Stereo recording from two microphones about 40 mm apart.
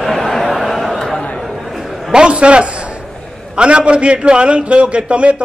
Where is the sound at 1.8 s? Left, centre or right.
Centre.